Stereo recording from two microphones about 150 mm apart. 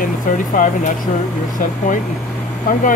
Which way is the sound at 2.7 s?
65° left (ahead or behind).